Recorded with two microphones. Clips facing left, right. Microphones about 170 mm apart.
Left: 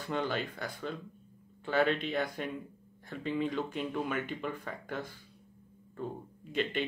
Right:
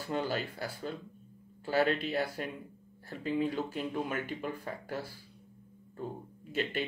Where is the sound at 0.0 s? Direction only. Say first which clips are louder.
Even; 10° right (ahead or behind).